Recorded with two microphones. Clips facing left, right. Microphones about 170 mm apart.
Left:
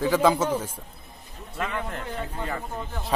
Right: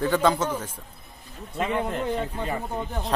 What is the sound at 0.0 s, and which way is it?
Speech, 5° left (ahead or behind).